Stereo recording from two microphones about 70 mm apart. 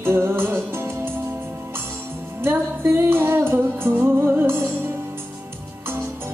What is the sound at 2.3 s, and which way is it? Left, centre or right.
Music, right.